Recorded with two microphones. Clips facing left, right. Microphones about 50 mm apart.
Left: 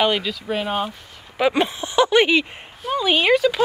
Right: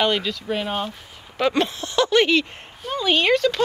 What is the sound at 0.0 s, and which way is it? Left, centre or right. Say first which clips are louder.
Speech: left 1 dB; centre.